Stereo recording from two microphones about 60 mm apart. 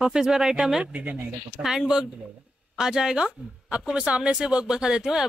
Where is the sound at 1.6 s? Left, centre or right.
Centre.